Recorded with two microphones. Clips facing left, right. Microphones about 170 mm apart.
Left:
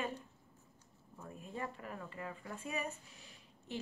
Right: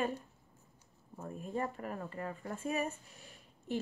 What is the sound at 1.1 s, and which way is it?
A woman's voice, 45° right (ahead or behind).